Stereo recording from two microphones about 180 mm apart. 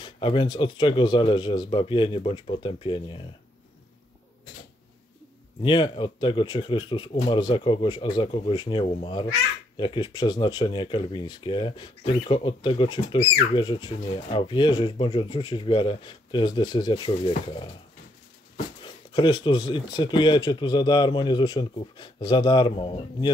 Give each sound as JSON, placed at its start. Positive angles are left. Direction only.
{"t": 0.0, "sound": "speech", "side_deg": 25}
{"t": 5.6, "sound": "speech", "side_deg": 25}
{"t": 18.8, "sound": "speech", "side_deg": 25}